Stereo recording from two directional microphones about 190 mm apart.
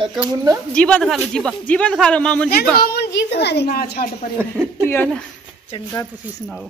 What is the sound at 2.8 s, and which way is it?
A woman's voice, 55° left (ahead or behind).